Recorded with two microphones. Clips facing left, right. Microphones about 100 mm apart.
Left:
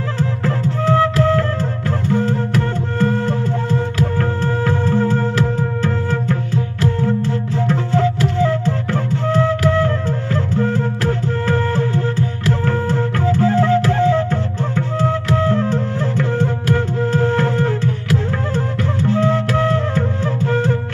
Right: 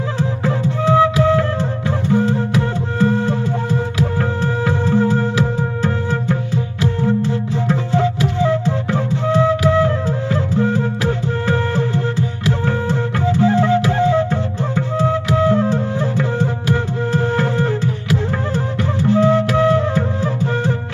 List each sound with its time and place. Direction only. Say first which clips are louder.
0.2 s music: even; 10° right (ahead or behind)